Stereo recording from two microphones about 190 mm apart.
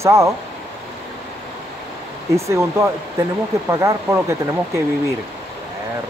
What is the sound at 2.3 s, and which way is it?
Speech, 15° right (ahead or behind).